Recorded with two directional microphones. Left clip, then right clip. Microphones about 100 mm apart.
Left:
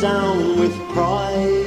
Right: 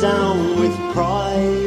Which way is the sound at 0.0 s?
25° left (ahead or behind).